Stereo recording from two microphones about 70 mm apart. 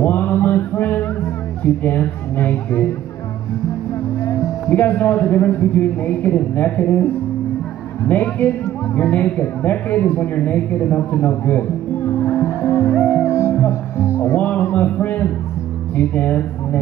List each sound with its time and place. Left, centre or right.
0.0 s music: left
4.6 s speech: left
8.1 s speech: left
12.2 s music: left
14.4 s a sound: left
16.0 s speech: left